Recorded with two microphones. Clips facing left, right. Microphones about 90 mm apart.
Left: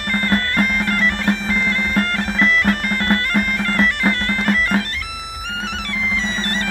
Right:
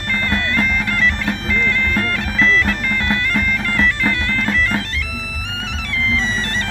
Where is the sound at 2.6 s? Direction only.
50° left (ahead or behind).